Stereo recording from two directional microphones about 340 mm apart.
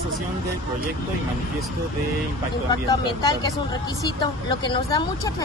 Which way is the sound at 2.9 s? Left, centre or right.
Centre.